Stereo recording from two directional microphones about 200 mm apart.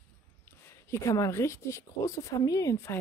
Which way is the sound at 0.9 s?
15° left (ahead or behind).